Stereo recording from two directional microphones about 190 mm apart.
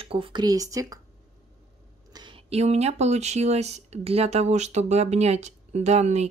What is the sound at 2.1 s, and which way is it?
Speech, 25° right (ahead or behind).